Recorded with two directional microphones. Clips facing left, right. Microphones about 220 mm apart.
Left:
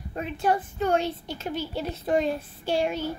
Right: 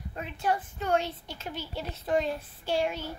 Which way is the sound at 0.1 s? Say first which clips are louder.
Left 5 dB; 40° left (ahead or behind).